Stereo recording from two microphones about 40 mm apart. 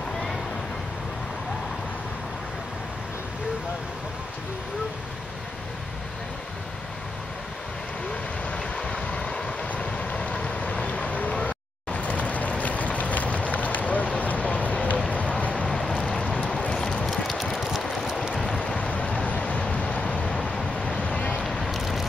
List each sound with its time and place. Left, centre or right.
8.5 s vehicle: left
9.7 s vehicle: left
16.3 s a sound: left
17.0 s a sound: centre
18.6 s vehicle: left
21.6 s vehicle: centre